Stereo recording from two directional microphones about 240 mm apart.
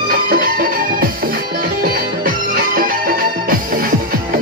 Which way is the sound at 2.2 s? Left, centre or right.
Right.